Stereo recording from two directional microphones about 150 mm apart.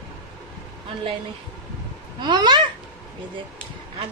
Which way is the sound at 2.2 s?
30° right (ahead or behind).